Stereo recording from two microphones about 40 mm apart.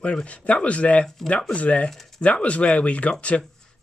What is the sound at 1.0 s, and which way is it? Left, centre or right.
Speech, centre.